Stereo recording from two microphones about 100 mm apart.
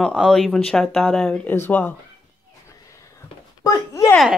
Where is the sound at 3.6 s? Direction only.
35° left (ahead or behind).